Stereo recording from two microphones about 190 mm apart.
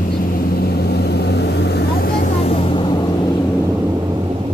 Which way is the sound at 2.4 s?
30° left (ahead or behind).